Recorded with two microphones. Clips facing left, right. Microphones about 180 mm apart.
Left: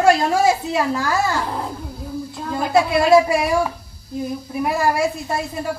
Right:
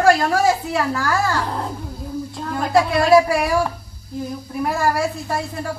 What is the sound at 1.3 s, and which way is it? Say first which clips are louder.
Speech: even; 5° left (ahead or behind).